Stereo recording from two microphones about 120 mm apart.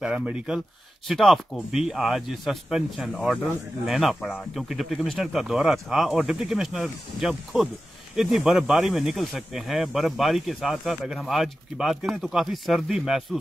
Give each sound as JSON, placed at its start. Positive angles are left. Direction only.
{"t": 0.0, "sound": "speech", "side_deg": -10}